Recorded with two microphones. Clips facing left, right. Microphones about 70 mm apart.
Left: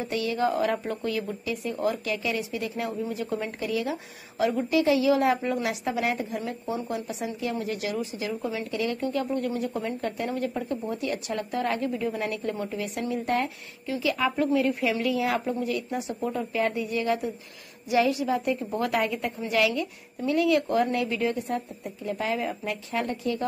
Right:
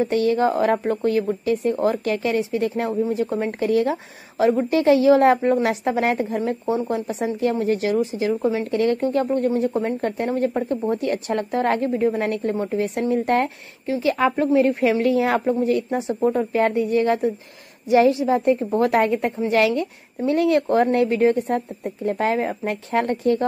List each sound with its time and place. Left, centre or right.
0.0 s speech: right
8.6 s speech: right